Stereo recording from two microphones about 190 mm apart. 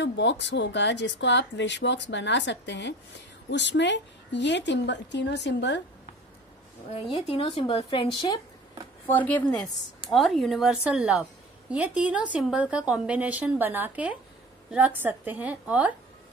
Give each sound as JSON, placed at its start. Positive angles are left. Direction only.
{"t": 0.0, "sound": "speech", "side_deg": 70}
{"t": 6.9, "sound": "a woman's voice", "side_deg": 30}
{"t": 9.1, "sound": "a woman's voice", "side_deg": 10}